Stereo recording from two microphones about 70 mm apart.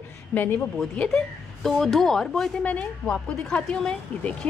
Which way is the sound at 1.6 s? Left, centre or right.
Centre.